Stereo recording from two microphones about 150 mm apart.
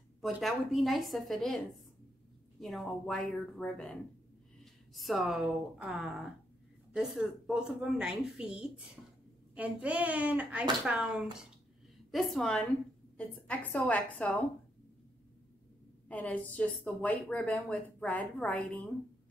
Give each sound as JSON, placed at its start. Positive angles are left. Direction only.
{"t": 0.2, "sound": "a woman's voice", "side_deg": 0}
{"t": 2.6, "sound": "a woman's voice", "side_deg": 0}
{"t": 16.1, "sound": "speech", "side_deg": 10}